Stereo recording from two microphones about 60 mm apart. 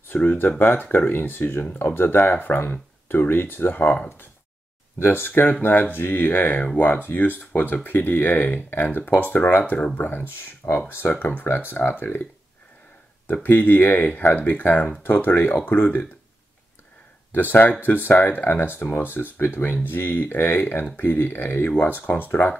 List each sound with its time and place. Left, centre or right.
0.1 s speech: left
13.3 s speech: left
17.3 s speech: left